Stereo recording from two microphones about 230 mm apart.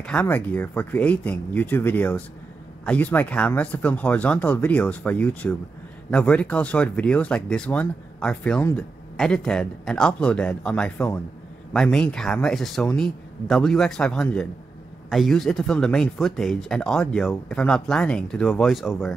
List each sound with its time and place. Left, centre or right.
0.0 s speech: centre